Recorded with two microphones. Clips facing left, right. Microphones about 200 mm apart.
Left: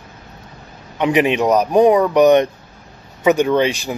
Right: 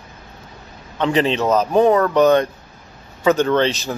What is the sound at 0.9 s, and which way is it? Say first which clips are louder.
A man's voice: left 2 dB; 15° left (ahead or behind).